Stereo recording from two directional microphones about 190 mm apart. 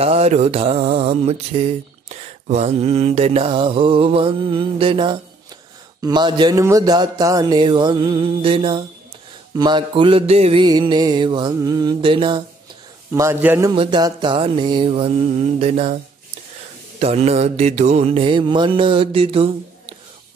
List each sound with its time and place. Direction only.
0.0 s mantra: 35° right (ahead or behind)
5.9 s music: 20° right (ahead or behind)
13.1 s a man's voice: 15° right (ahead or behind)
13.7 s music: 25° right (ahead or behind)
17.0 s music: 35° right (ahead or behind)